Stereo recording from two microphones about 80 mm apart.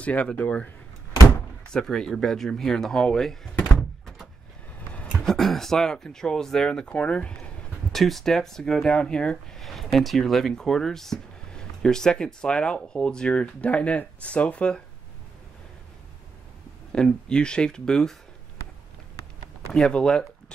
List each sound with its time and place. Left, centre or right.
0.0 s speech: centre
1.7 s speech: centre
4.9 s a sound: centre
5.2 s speech: centre
7.9 s speech: centre
16.9 s speech: centre
19.7 s speech: centre